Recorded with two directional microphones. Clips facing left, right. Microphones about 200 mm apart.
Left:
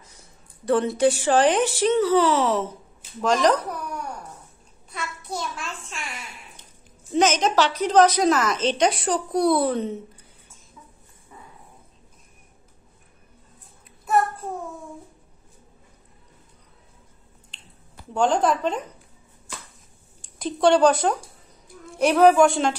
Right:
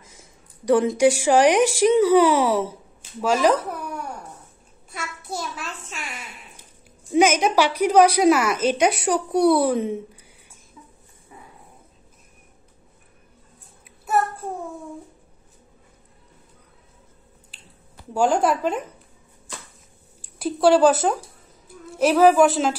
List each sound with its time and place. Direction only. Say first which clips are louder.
0.7 s speech: right 3 dB; 15° right (ahead or behind)
4.9 s a child's voice: even; 5° right (ahead or behind)
7.1 s speech: right 3 dB; 10° right (ahead or behind)
18.1 s speech: right 1 dB; 10° right (ahead or behind)
20.2 s a woman's voice: right 1 dB; 5° right (ahead or behind)